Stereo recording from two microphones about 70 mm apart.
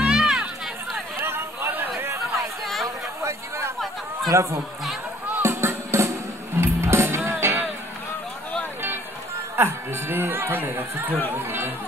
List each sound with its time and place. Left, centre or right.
0.0 s music: centre
1.2 s a sound: right
2.0 s chatter: right
2.6 s chatter: centre
3.2 s a sound: right
4.3 s speech: right
5.4 s music: right
9.6 s speech: right